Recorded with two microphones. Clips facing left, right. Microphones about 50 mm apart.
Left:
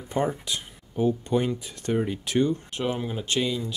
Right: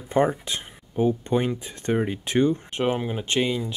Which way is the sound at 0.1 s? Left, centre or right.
Right.